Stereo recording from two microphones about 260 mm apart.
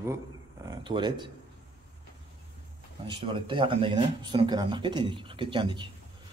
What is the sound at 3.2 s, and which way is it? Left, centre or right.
Speech, centre.